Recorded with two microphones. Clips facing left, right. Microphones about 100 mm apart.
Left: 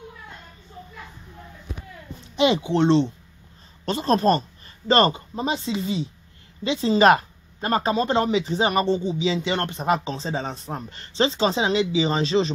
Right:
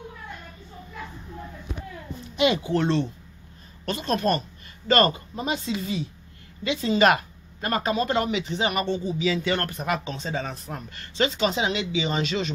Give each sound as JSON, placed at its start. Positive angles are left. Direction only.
{"t": 2.2, "sound": "speech", "side_deg": 30}